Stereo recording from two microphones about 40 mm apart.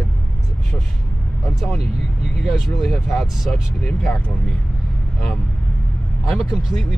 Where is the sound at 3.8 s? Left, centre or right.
Left.